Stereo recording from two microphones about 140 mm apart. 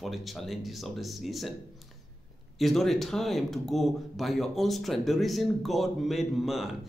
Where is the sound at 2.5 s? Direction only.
Centre (ahead or behind).